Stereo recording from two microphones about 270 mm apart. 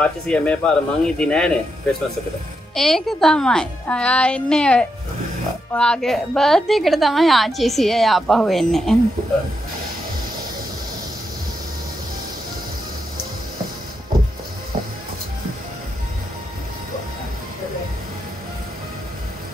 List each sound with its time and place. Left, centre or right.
0.0 s a woman's voice: centre
2.7 s a woman's voice: centre